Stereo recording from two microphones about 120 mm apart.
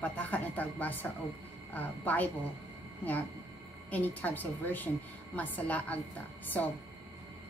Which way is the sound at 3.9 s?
15° left (ahead or behind).